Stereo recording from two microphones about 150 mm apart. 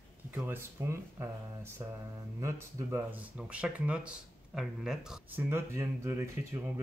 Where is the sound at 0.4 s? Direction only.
15° right (ahead or behind).